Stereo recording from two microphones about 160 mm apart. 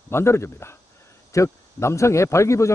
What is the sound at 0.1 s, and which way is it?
Speech, 15° left (ahead or behind).